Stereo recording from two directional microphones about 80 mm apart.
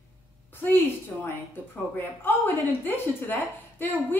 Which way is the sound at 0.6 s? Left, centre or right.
Left.